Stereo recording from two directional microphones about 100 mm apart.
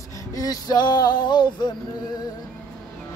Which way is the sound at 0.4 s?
40° left (ahead or behind).